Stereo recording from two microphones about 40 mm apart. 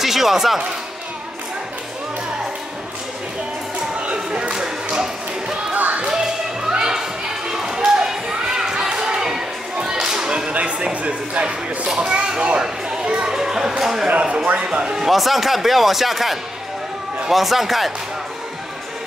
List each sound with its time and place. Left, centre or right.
0.0 s speech: centre
4.0 s a sound: right
5.7 s music: right
5.9 s a sound: right
10.5 s speech: right
12.3 s children playing: right
14.0 s speech: right
15.0 s speech: centre